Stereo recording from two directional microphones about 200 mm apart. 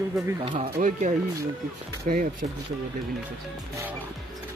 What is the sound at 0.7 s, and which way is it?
Speech, 45° right (ahead or behind).